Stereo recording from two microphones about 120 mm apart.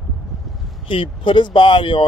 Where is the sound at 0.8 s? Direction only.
45° left (ahead or behind).